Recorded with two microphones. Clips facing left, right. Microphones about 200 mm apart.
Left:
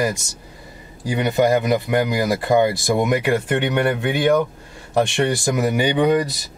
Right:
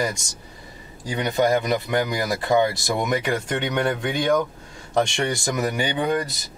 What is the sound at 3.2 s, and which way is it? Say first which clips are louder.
Speech: left 5 dB; 5° left (ahead or behind).